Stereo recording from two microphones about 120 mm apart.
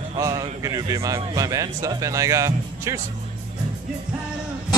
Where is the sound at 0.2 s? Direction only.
30° right (ahead or behind).